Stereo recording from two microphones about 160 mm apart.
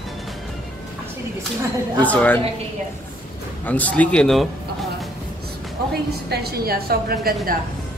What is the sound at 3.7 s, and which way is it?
Speech, 10° left (ahead or behind).